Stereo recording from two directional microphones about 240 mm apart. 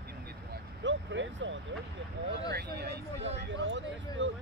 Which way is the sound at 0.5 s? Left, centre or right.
Right.